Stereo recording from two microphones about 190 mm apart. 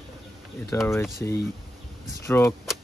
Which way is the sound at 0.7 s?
15° left (ahead or behind).